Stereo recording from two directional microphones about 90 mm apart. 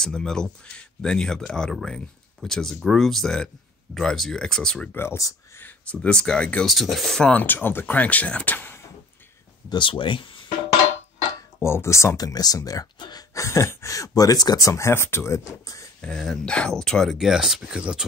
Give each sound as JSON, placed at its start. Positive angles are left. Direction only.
{"t": 0.0, "sound": "speech", "side_deg": 5}
{"t": 4.8, "sound": "speech", "side_deg": 25}
{"t": 5.6, "sound": "speech", "side_deg": 10}
{"t": 6.6, "sound": "speech", "side_deg": 0}
{"t": 9.7, "sound": "speech", "side_deg": 65}
{"t": 11.6, "sound": "speech", "side_deg": 30}
{"t": 16.0, "sound": "speech", "side_deg": 5}
{"t": 17.2, "sound": "speech", "side_deg": -5}